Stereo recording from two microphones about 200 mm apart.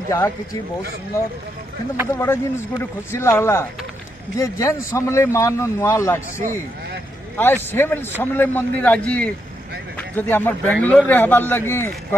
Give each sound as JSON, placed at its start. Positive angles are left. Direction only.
{"t": 0.1, "sound": "a man's voice", "side_deg": 15}
{"t": 2.1, "sound": "a man's voice", "side_deg": 10}